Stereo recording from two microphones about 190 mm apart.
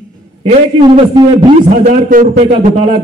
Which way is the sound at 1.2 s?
25° right (ahead or behind).